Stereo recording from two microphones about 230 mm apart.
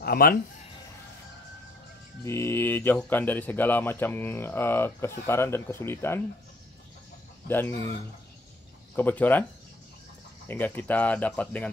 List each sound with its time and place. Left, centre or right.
0.0 s speech: left
2.2 s a man's voice: centre
7.4 s a man's voice: centre
8.9 s a man's voice: centre
10.5 s a man's voice: centre